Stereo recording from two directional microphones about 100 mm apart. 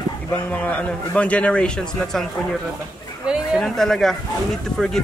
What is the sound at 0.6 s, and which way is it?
A man's voice, 15° left (ahead or behind).